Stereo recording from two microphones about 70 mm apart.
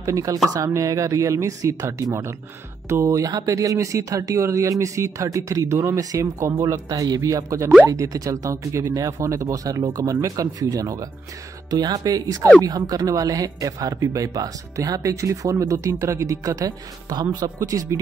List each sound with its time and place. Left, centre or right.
0.0 s speech: right
6.9 s speech: right
17.6 s speech: right